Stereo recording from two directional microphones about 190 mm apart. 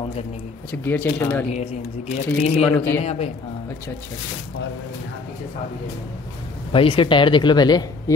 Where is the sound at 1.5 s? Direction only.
35° left (ahead or behind).